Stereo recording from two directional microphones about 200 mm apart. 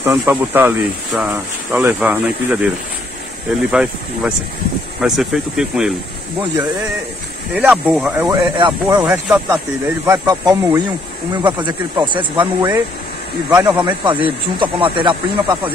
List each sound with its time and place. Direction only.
0.0 s speech: 10° right (ahead or behind)
3.7 s speech: 5° right (ahead or behind)
7.5 s speech: 5° right (ahead or behind)
8.3 s speech: 20° right (ahead or behind)
9.0 s speech: 10° right (ahead or behind)